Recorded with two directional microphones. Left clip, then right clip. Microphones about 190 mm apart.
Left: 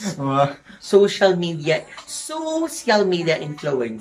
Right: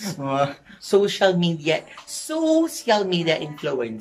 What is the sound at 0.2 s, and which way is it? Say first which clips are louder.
Speech: left 3 dB; centre (ahead or behind).